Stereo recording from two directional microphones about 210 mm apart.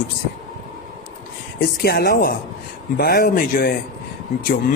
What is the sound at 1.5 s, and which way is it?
Speech, 45° left (ahead or behind).